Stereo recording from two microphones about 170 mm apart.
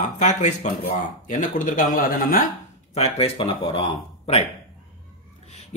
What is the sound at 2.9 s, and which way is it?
Speech, 35° left (ahead or behind).